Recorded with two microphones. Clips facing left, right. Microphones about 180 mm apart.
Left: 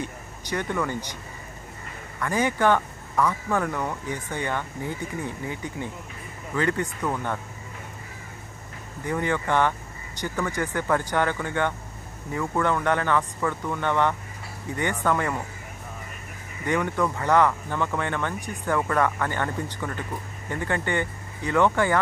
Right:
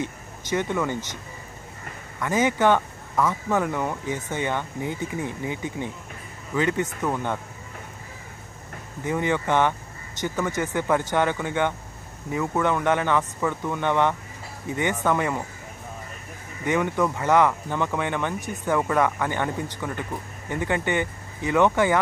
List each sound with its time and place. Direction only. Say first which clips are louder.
0.0 s speech: right 3 dB; 20° right (ahead or behind)
2.1 s speech: right 2 dB; 20° right (ahead or behind)
9.0 s speech: right 2 dB; 20° right (ahead or behind)
16.6 s speech: right 2 dB; 20° right (ahead or behind)